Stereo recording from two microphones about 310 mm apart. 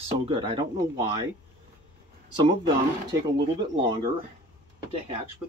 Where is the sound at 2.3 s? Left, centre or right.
Centre.